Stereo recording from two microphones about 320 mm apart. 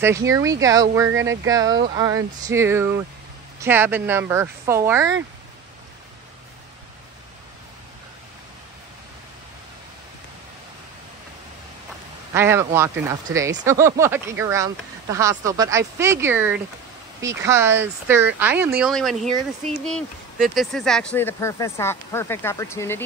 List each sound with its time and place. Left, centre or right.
0.0 s speech: centre
12.4 s speech: centre